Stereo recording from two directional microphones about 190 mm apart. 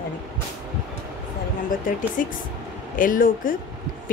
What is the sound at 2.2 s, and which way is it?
A woman's voice, 45° left (ahead or behind).